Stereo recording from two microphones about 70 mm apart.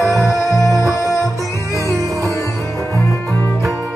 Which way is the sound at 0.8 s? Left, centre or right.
Left.